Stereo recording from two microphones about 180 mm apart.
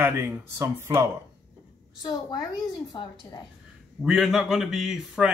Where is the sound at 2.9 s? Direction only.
25° left (ahead or behind).